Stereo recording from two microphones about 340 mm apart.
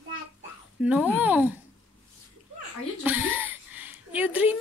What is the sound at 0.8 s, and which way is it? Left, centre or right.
Speech, centre.